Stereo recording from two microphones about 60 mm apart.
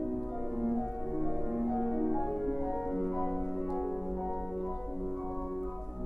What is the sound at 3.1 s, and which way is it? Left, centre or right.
Music, centre.